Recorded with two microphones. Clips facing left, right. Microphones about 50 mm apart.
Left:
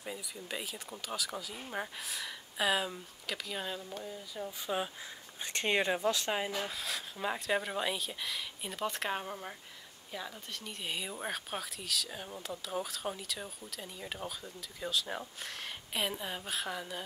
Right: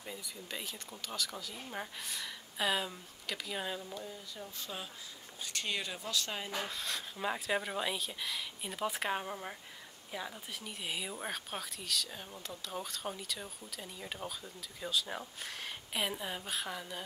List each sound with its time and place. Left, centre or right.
0.0 s speech: centre
2.0 s speech: centre
4.0 s speech: centre
5.4 s speech: left
6.5 s speech: centre